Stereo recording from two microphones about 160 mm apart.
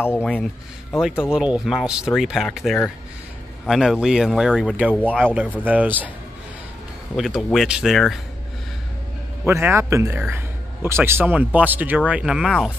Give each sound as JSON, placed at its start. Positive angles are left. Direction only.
{"t": 0.2, "sound": "speech", "side_deg": 5}
{"t": 4.9, "sound": "speech", "side_deg": 5}
{"t": 5.2, "sound": "a man's voice", "side_deg": -10}
{"t": 7.2, "sound": "speech", "side_deg": 0}
{"t": 9.5, "sound": "a man's voice", "side_deg": -15}